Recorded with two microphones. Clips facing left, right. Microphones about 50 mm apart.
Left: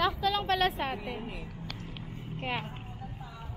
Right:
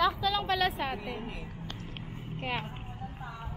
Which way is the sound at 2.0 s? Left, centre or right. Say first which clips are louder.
Even; centre.